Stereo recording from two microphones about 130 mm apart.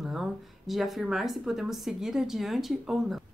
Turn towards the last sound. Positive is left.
turn(degrees=0)  # may be behind; listen again after turning